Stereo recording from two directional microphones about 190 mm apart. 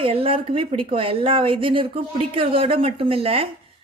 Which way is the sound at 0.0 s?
30° right (ahead or behind).